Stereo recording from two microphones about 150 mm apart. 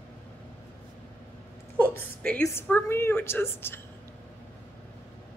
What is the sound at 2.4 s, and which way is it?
A woman's voice, 15° left (ahead or behind).